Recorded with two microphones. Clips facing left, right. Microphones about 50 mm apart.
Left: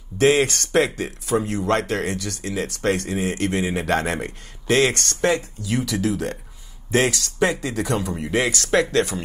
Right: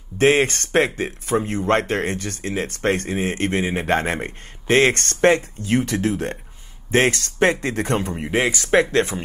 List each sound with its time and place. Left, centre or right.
0.2 s speech: right
8.1 s speech: right
8.9 s speech: right